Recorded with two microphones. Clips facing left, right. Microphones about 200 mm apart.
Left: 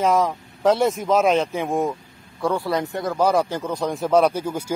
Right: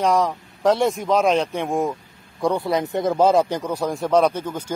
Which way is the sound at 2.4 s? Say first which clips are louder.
Right 1 dB; 20° right (ahead or behind).